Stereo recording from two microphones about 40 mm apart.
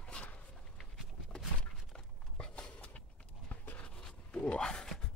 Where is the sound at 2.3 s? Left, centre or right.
Left.